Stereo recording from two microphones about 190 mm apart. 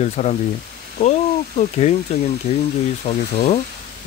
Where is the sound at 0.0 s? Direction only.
35° left (ahead or behind).